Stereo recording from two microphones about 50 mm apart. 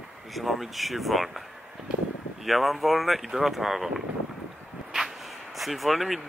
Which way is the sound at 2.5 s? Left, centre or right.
Centre.